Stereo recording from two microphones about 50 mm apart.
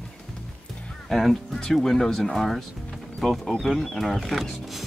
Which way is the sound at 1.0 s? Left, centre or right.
Centre.